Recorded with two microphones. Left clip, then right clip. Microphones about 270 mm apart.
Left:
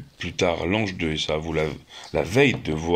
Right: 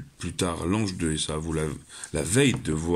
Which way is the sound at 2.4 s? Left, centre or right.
Centre.